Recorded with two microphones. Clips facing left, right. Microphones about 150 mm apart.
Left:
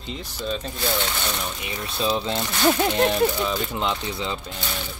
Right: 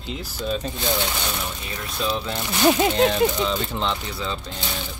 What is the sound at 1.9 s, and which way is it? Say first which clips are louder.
Speech: left 2 dB; 25° left (ahead or behind).